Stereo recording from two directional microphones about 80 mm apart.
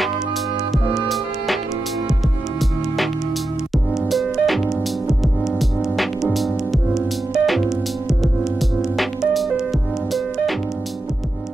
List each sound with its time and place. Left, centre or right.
1.0 s music: centre
3.7 s music: centre